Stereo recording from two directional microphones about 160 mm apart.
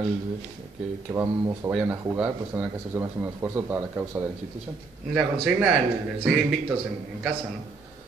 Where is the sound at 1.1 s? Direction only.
15° right (ahead or behind).